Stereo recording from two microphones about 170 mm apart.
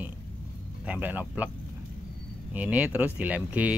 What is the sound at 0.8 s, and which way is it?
Speech, 10° right (ahead or behind).